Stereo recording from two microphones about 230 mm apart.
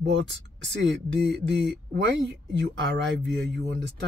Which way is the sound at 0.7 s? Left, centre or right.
Right.